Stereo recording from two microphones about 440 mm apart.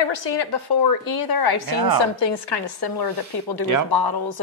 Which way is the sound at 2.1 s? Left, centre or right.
Left.